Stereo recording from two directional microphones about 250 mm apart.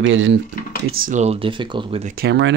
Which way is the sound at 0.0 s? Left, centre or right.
Right.